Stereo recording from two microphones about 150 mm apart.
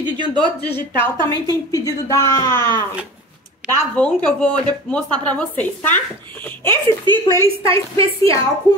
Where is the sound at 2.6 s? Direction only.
30° right (ahead or behind).